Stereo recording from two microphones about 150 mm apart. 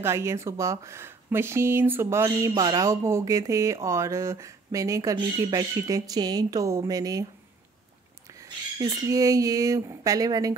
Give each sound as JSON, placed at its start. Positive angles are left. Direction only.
{"t": 0.0, "sound": "speech", "side_deg": -20}
{"t": 8.3, "sound": "a sound", "side_deg": -20}
{"t": 9.0, "sound": "speech", "side_deg": -20}